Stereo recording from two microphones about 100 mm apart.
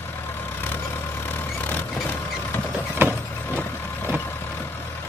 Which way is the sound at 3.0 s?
20° right (ahead or behind).